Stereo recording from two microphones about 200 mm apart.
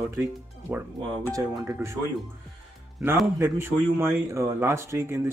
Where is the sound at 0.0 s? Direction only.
10° right (ahead or behind).